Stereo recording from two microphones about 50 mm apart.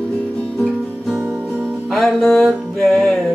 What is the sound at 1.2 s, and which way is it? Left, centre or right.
Music, centre.